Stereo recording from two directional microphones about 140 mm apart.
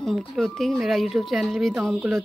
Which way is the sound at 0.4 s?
Centre (ahead or behind).